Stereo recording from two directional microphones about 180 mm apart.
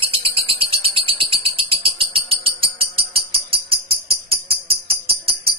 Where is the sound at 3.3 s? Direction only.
30° right (ahead or behind).